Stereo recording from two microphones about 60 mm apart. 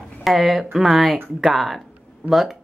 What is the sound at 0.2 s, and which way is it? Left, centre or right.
Speech, centre.